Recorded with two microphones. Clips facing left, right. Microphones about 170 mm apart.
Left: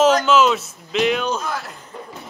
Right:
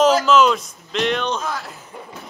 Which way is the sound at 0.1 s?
Centre (ahead or behind).